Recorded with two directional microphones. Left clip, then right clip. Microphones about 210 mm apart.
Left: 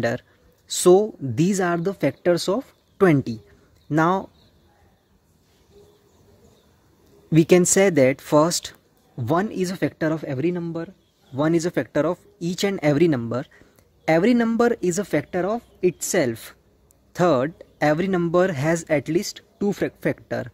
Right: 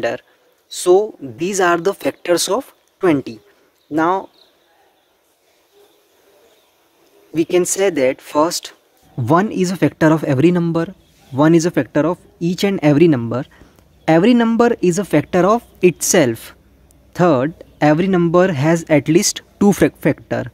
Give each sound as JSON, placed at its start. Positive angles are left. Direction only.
{"t": 0.7, "sound": "speech", "side_deg": 0}
{"t": 3.0, "sound": "speech", "side_deg": -5}
{"t": 7.3, "sound": "speech", "side_deg": 0}
{"t": 11.3, "sound": "speech", "side_deg": -10}
{"t": 20.0, "sound": "speech", "side_deg": -10}